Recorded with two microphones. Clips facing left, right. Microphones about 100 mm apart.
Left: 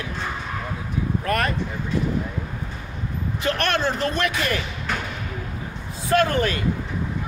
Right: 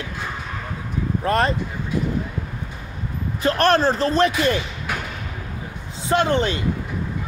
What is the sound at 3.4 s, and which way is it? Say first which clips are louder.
Speech: right 6 dB; 35° right (ahead or behind).